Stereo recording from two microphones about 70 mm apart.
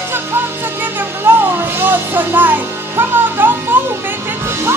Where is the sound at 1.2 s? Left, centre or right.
Right.